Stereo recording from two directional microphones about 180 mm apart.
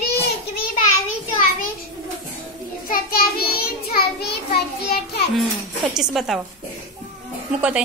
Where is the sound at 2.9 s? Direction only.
55° left (ahead or behind).